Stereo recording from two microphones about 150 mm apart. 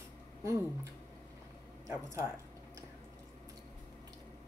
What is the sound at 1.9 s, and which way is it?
Speech, 20° right (ahead or behind).